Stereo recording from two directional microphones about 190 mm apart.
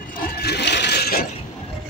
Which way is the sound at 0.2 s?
55° left (ahead or behind).